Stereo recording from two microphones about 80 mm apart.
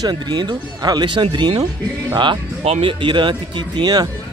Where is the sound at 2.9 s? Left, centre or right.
Right.